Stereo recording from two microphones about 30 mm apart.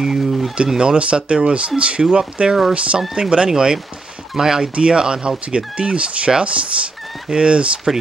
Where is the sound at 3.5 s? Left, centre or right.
Right.